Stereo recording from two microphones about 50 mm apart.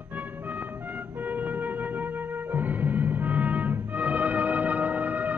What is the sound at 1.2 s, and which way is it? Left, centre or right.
Music, right.